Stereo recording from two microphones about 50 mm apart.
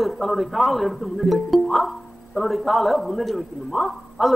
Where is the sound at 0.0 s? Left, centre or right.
Centre.